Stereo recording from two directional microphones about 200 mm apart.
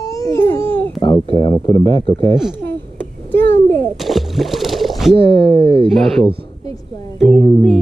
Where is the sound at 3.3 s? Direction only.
10° left (ahead or behind).